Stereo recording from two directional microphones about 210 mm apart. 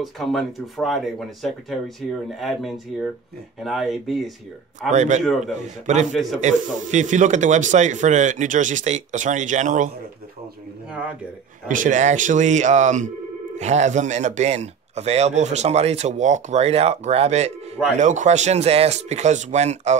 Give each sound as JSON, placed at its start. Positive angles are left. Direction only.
{"t": 0.0, "sound": "speech", "side_deg": 0}
{"t": 4.9, "sound": "speech", "side_deg": -35}
{"t": 11.6, "sound": "speech", "side_deg": -40}